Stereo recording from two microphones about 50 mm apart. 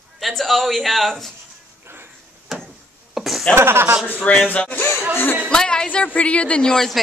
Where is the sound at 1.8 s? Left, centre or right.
Right.